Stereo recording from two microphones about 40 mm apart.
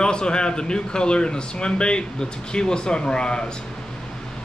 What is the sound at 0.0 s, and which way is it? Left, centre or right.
A man's voice, left.